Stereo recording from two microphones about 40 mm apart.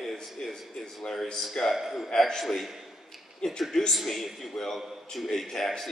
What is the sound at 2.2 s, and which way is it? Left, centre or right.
Speech, centre.